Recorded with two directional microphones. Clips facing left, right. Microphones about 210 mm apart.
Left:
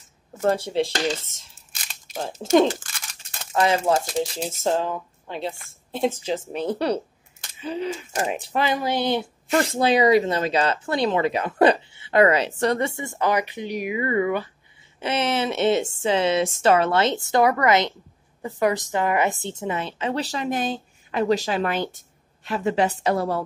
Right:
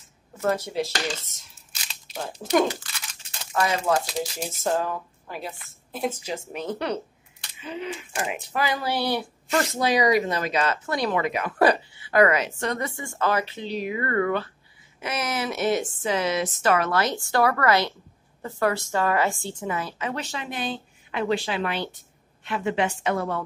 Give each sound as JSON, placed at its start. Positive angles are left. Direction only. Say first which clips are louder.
{"t": 0.4, "sound": "speech", "louder": "left 3 dB", "side_deg": 30}
{"t": 1.7, "sound": "a sound", "louder": "left 2 dB", "side_deg": 50}
{"t": 3.5, "sound": "a woman's voice", "louder": "left 3 dB", "side_deg": 30}
{"t": 8.5, "sound": "speech", "louder": "left 3 dB", "side_deg": 20}
{"t": 15.0, "sound": "a woman's voice", "louder": "left 5 dB", "side_deg": 30}